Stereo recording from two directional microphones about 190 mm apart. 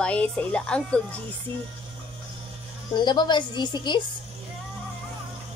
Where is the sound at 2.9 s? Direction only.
25° left (ahead or behind).